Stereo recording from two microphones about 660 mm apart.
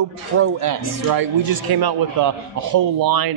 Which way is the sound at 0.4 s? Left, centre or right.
Right.